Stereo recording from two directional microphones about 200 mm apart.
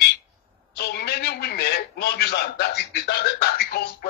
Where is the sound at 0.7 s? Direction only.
55° left (ahead or behind).